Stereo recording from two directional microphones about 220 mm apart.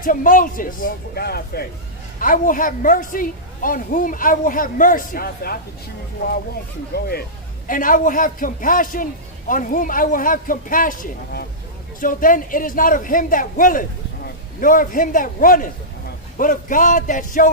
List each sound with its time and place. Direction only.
0.0 s a man's voice: 40° left (ahead or behind)
7.1 s a man's voice: 40° left (ahead or behind)